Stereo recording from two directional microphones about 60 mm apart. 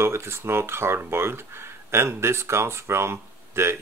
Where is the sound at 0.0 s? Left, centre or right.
Right.